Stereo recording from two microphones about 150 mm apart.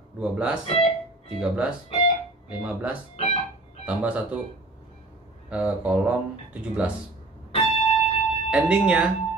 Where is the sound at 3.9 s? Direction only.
10° right (ahead or behind).